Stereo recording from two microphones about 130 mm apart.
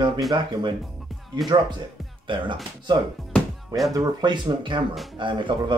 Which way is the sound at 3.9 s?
30° right (ahead or behind).